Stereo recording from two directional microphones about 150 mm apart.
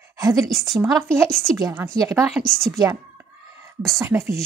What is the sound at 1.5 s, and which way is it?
Speech, 20° right (ahead or behind).